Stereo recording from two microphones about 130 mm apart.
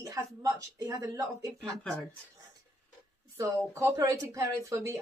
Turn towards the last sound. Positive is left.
turn(degrees=-20)  # may be behind; listen again after turning